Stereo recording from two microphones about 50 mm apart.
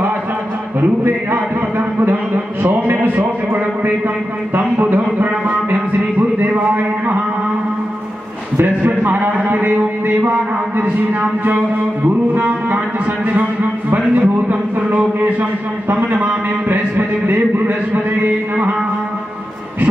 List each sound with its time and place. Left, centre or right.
0.7 s a sound: right
2.6 s speech: right
4.6 s speech: right
8.5 s speech: right
15.9 s speech: right